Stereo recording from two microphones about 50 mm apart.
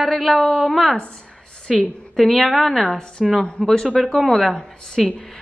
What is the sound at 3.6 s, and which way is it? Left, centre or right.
Speech, centre.